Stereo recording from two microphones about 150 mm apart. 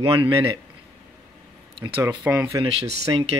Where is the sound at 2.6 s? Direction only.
35° right (ahead or behind).